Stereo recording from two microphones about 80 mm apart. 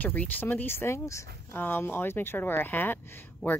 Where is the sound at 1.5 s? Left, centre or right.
Left.